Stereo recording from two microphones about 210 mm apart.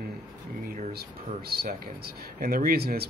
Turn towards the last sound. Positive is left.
turn(degrees=-45)  # may be behind; listen again after turning